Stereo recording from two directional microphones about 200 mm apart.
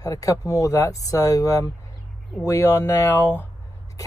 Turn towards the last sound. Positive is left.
turn(degrees=10)  # may be behind; listen again after turning